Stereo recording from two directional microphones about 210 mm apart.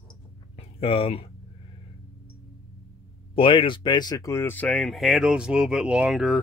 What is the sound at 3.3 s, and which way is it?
Speech, 25° left (ahead or behind).